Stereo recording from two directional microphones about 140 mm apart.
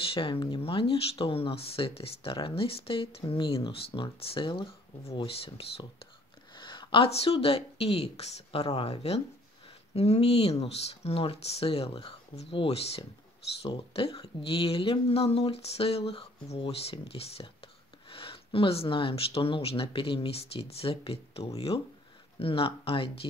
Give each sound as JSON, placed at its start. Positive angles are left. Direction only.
{"t": 0.0, "sound": "speech", "side_deg": 40}